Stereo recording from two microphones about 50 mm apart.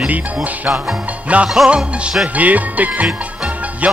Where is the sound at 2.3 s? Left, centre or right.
Right.